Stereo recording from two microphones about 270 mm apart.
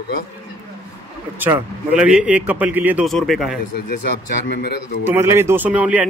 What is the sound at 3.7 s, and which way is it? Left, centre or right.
Speech, left.